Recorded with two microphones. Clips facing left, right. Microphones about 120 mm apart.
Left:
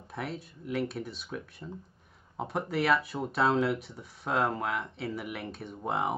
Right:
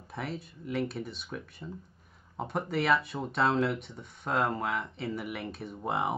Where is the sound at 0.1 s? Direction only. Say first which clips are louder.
Even; centre (ahead or behind).